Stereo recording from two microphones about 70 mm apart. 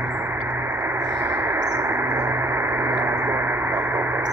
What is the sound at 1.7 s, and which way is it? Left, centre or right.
Bird, right.